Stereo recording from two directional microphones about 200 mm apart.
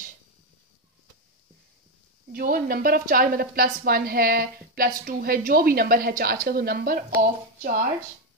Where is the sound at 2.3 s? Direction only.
45° right (ahead or behind).